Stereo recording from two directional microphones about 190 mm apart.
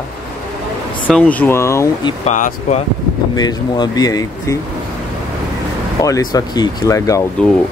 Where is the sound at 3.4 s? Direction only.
20° left (ahead or behind).